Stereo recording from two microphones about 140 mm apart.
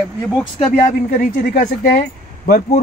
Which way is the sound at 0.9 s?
60° left (ahead or behind).